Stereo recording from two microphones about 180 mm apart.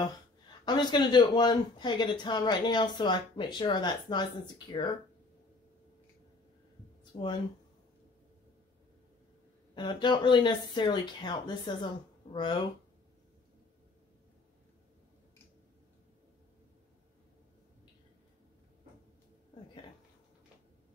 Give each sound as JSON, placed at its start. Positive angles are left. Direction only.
{"t": 0.7, "sound": "speech", "side_deg": 25}
{"t": 7.1, "sound": "speech", "side_deg": 30}
{"t": 9.8, "sound": "speech", "side_deg": 25}